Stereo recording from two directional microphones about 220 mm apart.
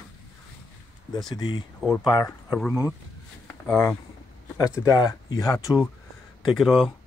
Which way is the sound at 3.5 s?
5° left (ahead or behind).